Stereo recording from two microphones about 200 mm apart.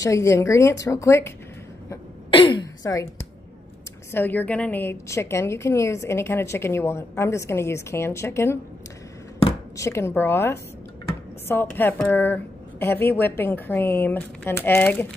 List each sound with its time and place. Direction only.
0.0 s a woman's voice: 15° left (ahead or behind)
2.3 s a sound: 25° left (ahead or behind)
4.1 s a woman's voice: 10° left (ahead or behind)
9.8 s a woman's voice: 15° left (ahead or behind)